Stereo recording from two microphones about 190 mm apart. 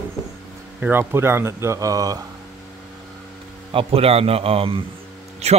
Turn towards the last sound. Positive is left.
turn(degrees=-35)  # may be behind; listen again after turning